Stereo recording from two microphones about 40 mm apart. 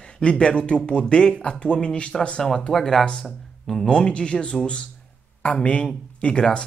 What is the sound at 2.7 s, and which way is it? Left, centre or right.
Speech, centre.